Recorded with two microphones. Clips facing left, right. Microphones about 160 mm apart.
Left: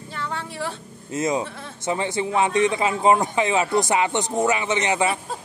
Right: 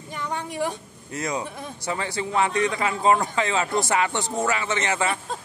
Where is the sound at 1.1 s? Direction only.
20° left (ahead or behind).